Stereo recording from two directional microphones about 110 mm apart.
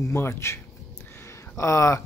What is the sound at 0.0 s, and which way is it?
Speech, 25° left (ahead or behind).